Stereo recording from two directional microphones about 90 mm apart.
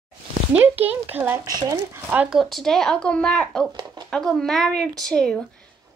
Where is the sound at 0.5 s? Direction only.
20° right (ahead or behind).